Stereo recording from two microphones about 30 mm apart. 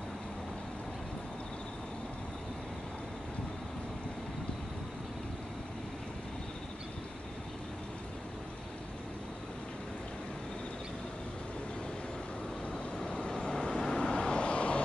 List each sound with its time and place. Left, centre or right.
12.7 s vehicle: left
13.3 s vehicle: centre; by 14.8 s left